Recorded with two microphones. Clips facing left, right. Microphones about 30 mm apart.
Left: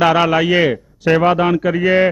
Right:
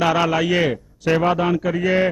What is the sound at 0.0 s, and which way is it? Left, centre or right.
A man's voice, left.